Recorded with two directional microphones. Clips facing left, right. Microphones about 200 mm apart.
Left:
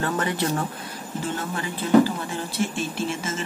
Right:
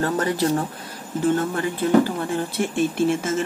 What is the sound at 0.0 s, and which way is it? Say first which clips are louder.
Speech: right 4 dB; 40° right (ahead or behind).